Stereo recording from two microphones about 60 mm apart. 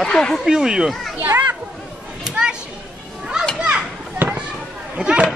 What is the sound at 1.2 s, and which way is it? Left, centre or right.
Speech, right.